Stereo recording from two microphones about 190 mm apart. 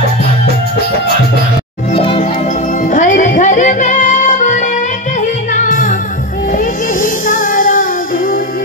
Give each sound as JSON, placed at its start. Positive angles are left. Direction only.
{"t": 2.0, "sound": "music", "side_deg": 30}
{"t": 2.9, "sound": "music", "side_deg": 45}